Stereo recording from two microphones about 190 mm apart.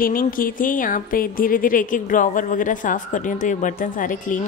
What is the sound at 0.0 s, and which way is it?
Speech, 50° left (ahead or behind).